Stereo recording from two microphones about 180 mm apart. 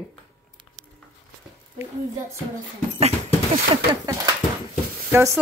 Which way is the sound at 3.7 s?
25° right (ahead or behind).